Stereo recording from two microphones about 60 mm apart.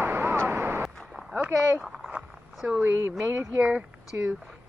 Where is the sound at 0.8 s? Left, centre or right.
Centre.